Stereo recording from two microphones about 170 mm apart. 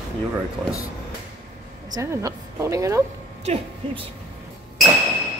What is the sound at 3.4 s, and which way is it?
Speech, 35° right (ahead or behind).